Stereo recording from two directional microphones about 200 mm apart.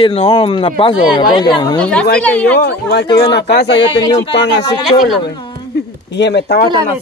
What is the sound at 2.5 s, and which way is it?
Speech, 55° left (ahead or behind).